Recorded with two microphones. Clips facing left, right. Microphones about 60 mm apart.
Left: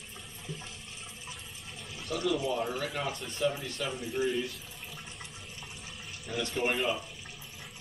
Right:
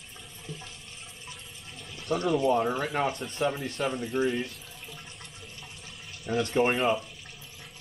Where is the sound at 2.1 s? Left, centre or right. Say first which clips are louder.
Right 6 dB; right.